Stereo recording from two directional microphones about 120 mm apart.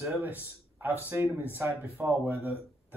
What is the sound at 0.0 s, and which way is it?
Speech, 20° right (ahead or behind).